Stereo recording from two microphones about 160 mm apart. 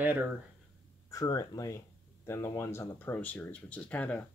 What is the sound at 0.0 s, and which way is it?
Speech, 10° right (ahead or behind).